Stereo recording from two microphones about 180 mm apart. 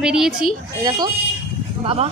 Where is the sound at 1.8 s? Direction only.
35° right (ahead or behind).